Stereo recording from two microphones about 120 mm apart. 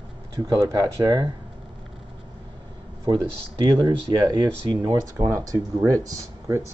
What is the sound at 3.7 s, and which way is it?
Speech, 30° right (ahead or behind).